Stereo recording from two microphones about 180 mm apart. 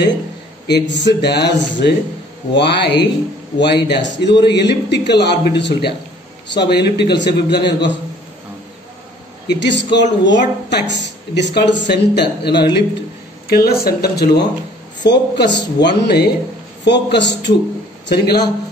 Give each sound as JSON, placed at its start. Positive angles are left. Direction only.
{"t": 0.7, "sound": "speech", "side_deg": 75}
{"t": 9.5, "sound": "a man's voice", "side_deg": 75}
{"t": 18.0, "sound": "speech", "side_deg": 60}